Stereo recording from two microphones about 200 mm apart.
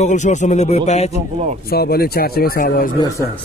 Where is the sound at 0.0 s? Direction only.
35° left (ahead or behind).